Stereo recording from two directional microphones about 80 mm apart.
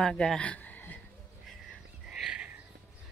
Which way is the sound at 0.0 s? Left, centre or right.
Centre.